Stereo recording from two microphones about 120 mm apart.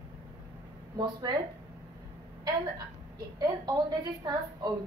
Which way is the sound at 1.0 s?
35° right (ahead or behind).